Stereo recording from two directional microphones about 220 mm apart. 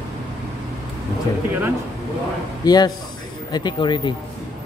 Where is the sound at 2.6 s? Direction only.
20° left (ahead or behind).